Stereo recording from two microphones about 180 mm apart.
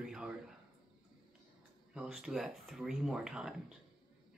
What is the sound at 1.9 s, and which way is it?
Speech, 5° right (ahead or behind).